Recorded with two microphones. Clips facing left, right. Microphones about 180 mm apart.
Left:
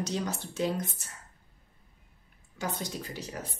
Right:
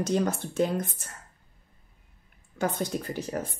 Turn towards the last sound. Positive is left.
turn(degrees=-50)  # may be behind; listen again after turning